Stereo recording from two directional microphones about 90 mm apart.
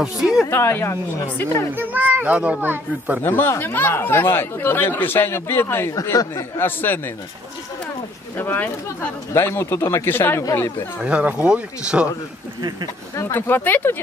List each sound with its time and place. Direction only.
0.0 s a woman's voice: 5° right (ahead or behind)
0.5 s speech: 25° left (ahead or behind)
1.7 s a child's voice: 20° right (ahead or behind)
3.3 s speech: 25° left (ahead or behind)
8.4 s speech: 25° left (ahead or behind)
11.0 s speech: 10° right (ahead or behind)
13.1 s speech: 30° left (ahead or behind)